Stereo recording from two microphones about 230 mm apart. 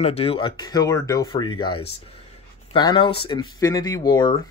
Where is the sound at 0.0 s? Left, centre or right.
Left.